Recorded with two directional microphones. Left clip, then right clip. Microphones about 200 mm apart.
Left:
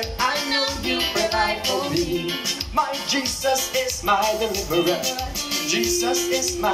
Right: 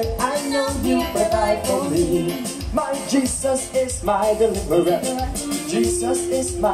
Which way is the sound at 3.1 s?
40° right (ahead or behind).